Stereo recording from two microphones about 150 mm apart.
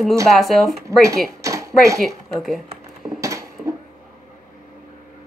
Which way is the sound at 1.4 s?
20° right (ahead or behind).